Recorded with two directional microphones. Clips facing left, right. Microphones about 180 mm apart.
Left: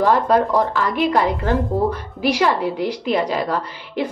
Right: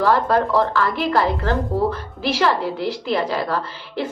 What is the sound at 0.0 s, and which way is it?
A woman's voice, 15° left (ahead or behind).